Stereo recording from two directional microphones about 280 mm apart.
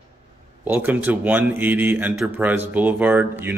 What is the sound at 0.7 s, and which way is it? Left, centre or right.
Speech, centre.